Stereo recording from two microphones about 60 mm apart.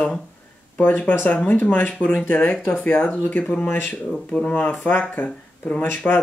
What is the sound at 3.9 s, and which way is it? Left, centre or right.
Speech, centre.